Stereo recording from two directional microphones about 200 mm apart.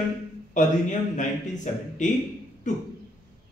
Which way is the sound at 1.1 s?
40° left (ahead or behind).